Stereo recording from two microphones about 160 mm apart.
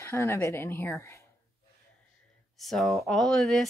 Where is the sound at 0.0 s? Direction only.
15° left (ahead or behind).